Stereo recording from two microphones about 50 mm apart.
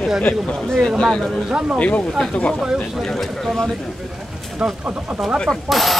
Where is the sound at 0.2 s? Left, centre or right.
Left.